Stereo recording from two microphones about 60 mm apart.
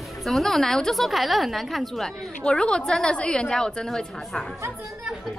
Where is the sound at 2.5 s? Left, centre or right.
Centre.